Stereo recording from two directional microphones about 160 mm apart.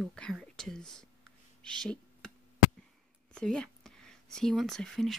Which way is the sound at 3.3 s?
5° left (ahead or behind).